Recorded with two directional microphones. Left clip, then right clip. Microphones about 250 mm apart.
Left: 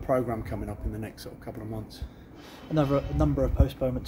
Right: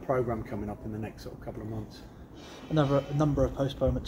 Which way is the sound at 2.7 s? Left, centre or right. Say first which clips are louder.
Left 1 dB; centre.